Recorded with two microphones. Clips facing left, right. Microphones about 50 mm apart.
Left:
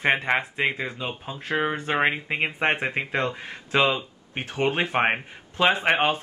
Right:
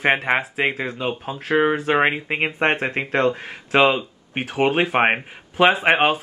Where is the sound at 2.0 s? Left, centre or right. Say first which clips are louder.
Right 4 dB; centre.